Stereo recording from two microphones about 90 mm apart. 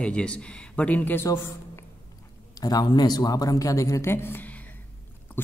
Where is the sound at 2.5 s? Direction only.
45° left (ahead or behind); by 4.7 s 20° left (ahead or behind).